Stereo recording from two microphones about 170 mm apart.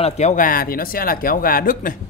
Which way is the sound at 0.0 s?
40° left (ahead or behind).